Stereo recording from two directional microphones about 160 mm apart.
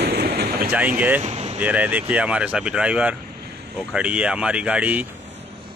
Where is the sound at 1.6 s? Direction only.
10° right (ahead or behind).